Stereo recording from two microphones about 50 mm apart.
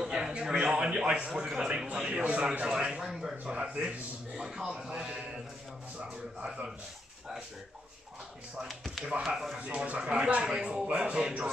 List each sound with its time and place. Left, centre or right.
0.0 s a sound: centre
1.6 s speech: centre
8.6 s speech: centre
9.0 s speech: centre